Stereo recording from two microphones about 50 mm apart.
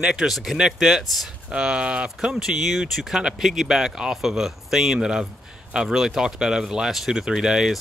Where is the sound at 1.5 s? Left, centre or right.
Centre.